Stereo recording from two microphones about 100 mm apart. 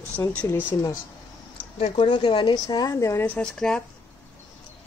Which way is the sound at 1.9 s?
50° left (ahead or behind).